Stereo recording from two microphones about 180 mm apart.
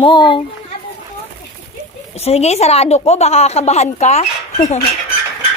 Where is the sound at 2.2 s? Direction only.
35° left (ahead or behind).